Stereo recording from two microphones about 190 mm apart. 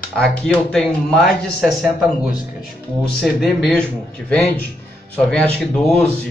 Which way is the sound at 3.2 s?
Centre (ahead or behind).